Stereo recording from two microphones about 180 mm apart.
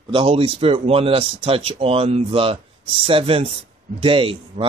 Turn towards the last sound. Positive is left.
turn(degrees=-30)  # may be behind; listen again after turning